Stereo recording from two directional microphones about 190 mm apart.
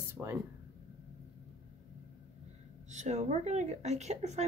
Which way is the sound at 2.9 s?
35° right (ahead or behind).